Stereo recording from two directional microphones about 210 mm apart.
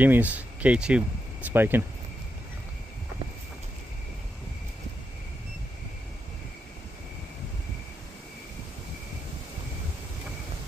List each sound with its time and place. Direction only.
0.0 s speech: 5° right (ahead or behind)